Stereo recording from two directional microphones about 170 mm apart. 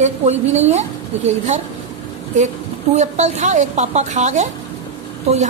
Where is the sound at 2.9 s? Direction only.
40° right (ahead or behind).